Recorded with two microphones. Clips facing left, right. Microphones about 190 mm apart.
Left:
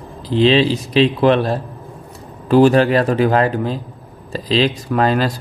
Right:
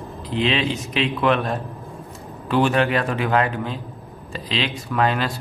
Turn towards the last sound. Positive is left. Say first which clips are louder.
# left 5 dB
turn(degrees=40)  # may be behind; listen again after turning